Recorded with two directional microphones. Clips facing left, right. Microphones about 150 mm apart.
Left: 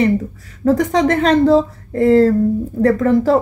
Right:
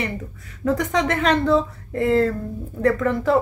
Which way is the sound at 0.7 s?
35° left (ahead or behind).